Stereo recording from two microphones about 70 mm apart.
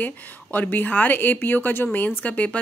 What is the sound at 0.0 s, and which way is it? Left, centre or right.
Speech, left.